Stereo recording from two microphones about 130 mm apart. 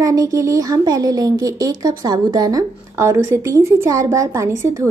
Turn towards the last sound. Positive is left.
turn(degrees=-20)  # may be behind; listen again after turning